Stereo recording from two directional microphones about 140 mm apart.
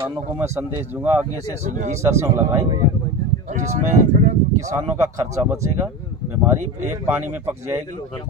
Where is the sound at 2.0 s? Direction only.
20° right (ahead or behind).